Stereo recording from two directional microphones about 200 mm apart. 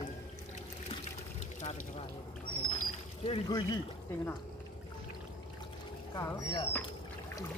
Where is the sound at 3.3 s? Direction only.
20° left (ahead or behind).